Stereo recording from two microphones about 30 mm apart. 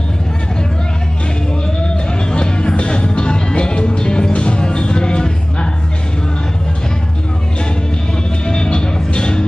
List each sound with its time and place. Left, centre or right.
2.3 s music: left
8.5 s music: left